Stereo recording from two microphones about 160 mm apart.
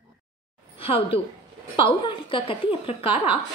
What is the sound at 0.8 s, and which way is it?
A woman's voice, 35° left (ahead or behind).